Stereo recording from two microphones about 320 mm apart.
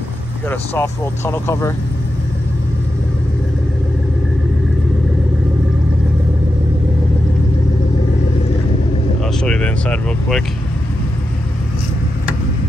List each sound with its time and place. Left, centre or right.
0.5 s speech: centre
9.2 s vehicle: centre